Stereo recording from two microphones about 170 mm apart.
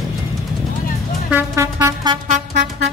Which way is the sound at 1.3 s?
15° right (ahead or behind).